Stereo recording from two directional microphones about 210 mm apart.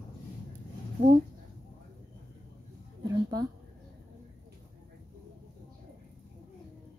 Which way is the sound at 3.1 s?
20° right (ahead or behind).